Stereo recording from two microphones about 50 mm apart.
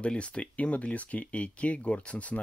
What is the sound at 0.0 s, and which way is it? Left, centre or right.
Speech, left.